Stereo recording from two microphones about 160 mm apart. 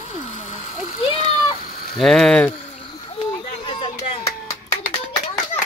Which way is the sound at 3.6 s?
30° left (ahead or behind).